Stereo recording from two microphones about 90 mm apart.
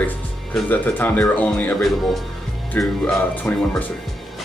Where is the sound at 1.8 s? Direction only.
Centre (ahead or behind).